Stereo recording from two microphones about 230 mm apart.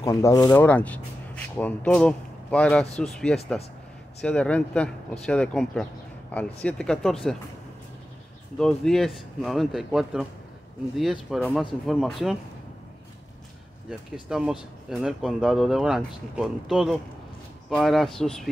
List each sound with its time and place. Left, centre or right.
0.0 s speech: centre
8.5 s speech: centre
14.3 s speech: centre